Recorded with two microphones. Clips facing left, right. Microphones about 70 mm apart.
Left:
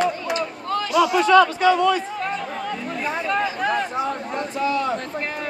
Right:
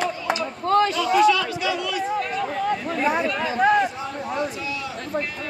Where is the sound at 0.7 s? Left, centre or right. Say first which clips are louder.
Right 9 dB; right.